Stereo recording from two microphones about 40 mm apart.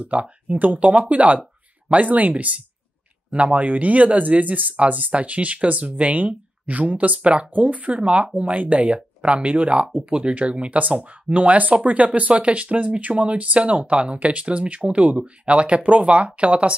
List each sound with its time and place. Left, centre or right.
0.0 s speech: right
3.5 s speech: right